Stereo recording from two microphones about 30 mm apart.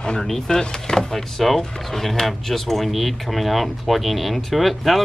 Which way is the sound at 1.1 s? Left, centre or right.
Centre.